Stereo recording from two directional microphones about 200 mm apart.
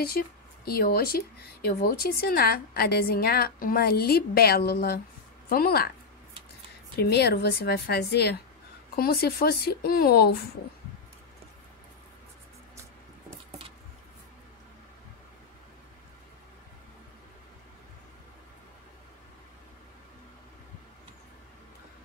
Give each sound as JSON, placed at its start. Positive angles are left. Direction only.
{"t": 0.7, "sound": "a woman's voice", "side_deg": 50}
{"t": 7.0, "sound": "a woman's voice", "side_deg": 55}